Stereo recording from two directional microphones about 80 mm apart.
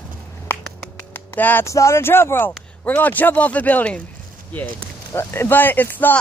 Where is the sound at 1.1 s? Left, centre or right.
Left.